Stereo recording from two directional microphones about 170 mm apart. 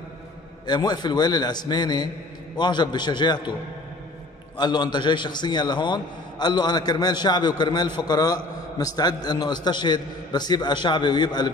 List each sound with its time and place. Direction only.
0.7 s a man's voice: 25° left (ahead or behind)
4.6 s a man's voice: 25° left (ahead or behind)